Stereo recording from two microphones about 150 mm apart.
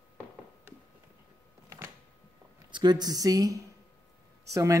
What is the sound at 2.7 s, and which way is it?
Speech, 30° right (ahead or behind).